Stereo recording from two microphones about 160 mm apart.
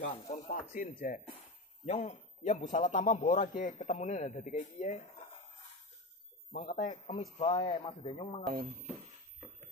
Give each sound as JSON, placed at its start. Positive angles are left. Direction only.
{"t": 0.3, "sound": "speech", "side_deg": 50}
{"t": 1.9, "sound": "a man's voice", "side_deg": 40}
{"t": 6.5, "sound": "a man's voice", "side_deg": 50}